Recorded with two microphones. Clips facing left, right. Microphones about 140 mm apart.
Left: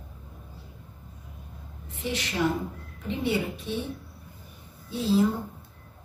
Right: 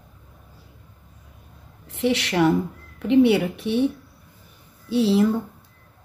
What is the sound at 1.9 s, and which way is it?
Speech, 75° right (ahead or behind).